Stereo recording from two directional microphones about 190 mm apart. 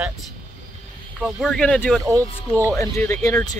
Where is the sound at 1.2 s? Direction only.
5° right (ahead or behind).